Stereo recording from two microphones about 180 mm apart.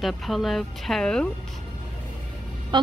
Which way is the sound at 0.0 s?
Centre (ahead or behind).